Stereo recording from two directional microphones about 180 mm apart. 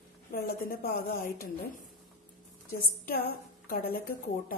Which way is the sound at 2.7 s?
55° left (ahead or behind).